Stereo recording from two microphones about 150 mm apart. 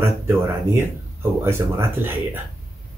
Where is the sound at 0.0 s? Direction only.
20° right (ahead or behind).